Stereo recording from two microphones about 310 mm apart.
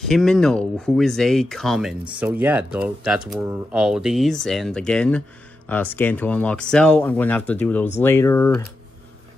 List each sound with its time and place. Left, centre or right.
0.1 s speech: centre